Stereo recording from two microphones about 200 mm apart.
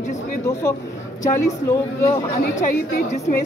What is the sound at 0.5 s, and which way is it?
A woman's voice, 10° left (ahead or behind).